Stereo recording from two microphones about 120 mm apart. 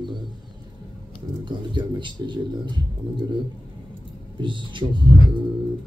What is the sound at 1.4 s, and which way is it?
Speech, 40° right (ahead or behind).